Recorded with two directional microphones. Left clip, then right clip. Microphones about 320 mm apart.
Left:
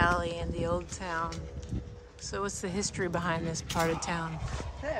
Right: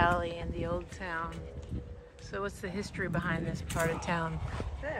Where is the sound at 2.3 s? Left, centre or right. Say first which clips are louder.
Left 3 dB; centre.